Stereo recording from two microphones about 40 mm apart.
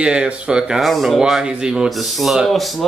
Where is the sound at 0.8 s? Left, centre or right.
Centre.